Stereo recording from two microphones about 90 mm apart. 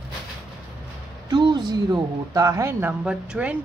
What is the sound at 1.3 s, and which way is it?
Speech, 55° right (ahead or behind).